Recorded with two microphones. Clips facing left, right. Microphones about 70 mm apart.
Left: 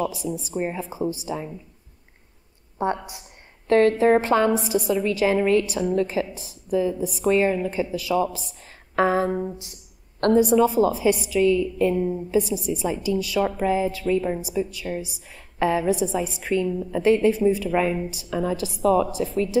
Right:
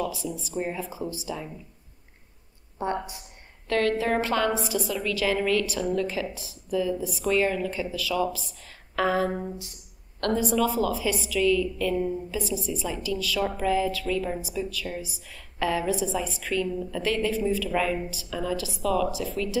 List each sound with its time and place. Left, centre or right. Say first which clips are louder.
0.1 s speech: left 4 dB; right
0.5 s a woman's voice: left 1 dB; left
2.8 s a woman's voice: left 4 dB; left
10.5 s a woman's voice: left 6 dB; left